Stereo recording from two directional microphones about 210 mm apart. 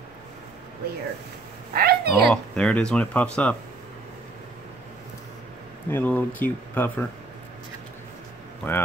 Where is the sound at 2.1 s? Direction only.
5° left (ahead or behind).